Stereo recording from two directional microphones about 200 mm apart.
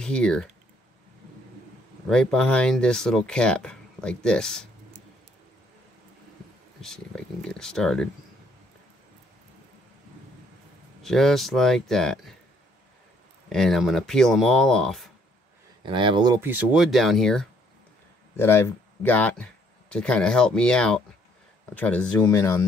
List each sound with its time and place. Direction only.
0.0 s speech: 5° left (ahead or behind)
2.0 s speech: 5° left (ahead or behind)
7.4 s speech: 5° left (ahead or behind)
11.0 s speech: centre (ahead or behind)
13.5 s speech: centre (ahead or behind)
15.8 s speech: 25° right (ahead or behind)
16.3 s speech: 10° right (ahead or behind); by 22.7 s 15° left (ahead or behind)